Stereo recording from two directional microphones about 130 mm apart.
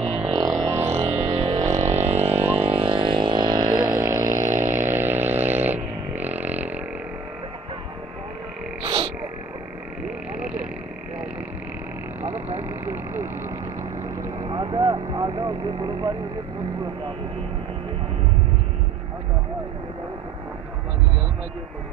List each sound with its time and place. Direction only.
0.3 s a sound: 25° right (ahead or behind)
0.9 s music: 55° right (ahead or behind)
1.8 s vehicle: 60° right (ahead or behind); by 6.8 s 10° right (ahead or behind)
8.8 s frog: 40° right (ahead or behind)
10.3 s frog: 10° right (ahead or behind)
12.6 s vehicle: 15° right (ahead or behind)
14.4 s vehicle: 30° right (ahead or behind)